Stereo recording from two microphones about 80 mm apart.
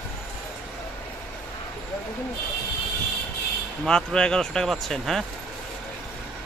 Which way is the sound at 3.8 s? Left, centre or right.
Centre.